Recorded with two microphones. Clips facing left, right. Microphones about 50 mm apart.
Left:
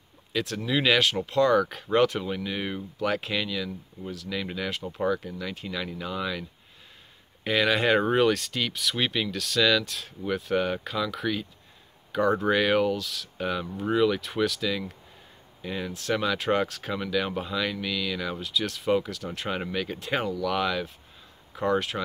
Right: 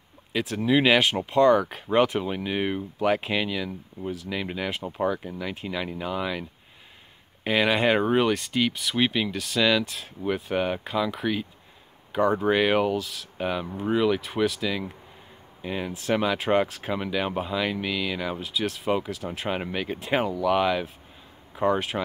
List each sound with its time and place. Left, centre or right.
0.3 s speech: centre
7.4 s speech: centre